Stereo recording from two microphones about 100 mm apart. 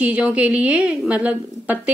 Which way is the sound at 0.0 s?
15° right (ahead or behind).